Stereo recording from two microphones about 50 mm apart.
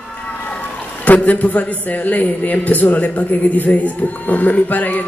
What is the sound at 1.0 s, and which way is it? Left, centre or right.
A man's voice, left.